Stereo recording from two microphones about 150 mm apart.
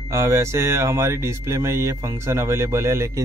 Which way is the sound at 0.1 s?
20° right (ahead or behind).